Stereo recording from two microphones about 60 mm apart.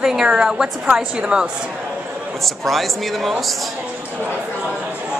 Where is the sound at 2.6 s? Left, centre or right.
Centre.